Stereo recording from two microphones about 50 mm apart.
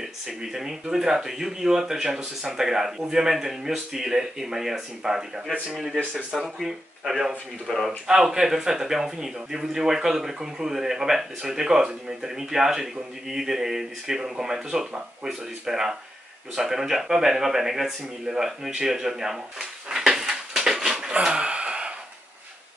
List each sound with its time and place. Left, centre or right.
0.0 s speech: centre
6.4 s a man's voice: centre
21.2 s a sound: centre